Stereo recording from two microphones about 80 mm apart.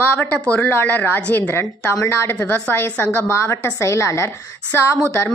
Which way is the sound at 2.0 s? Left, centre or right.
Left.